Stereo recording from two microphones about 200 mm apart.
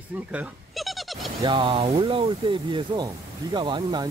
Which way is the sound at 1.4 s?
25° right (ahead or behind).